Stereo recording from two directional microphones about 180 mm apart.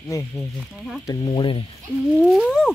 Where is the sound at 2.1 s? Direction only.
Centre (ahead or behind).